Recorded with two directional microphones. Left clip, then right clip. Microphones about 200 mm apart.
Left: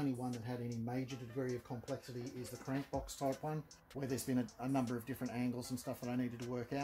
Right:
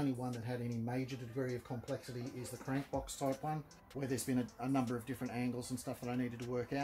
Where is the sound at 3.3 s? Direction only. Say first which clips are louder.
Right 2 dB; 30° left (ahead or behind).